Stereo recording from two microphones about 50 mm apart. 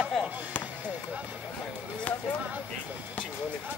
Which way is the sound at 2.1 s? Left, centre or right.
Left.